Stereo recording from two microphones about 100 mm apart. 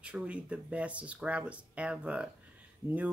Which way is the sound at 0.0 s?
10° right (ahead or behind).